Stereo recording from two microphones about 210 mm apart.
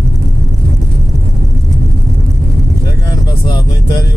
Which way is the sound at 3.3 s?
20° left (ahead or behind).